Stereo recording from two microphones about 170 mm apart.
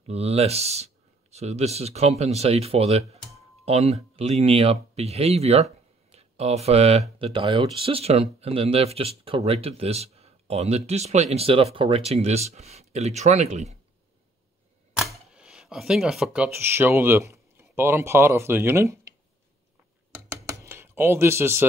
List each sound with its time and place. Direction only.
0.0 s speech: 40° right (ahead or behind)
15.0 s camera: 5° right (ahead or behind)
16.6 s speech: 15° right (ahead or behind)
20.2 s a sound: 15° right (ahead or behind)